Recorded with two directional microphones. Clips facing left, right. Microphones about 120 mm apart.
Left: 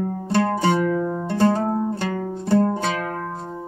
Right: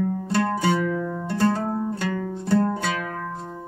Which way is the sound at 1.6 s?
40° left (ahead or behind).